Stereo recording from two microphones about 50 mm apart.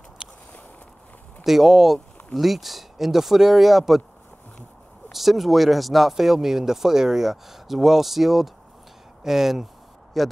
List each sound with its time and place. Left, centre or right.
0.2 s walk: centre
1.4 s speech: centre
5.1 s speech: centre